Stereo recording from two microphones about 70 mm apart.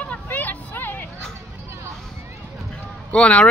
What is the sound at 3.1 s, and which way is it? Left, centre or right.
Speech, centre.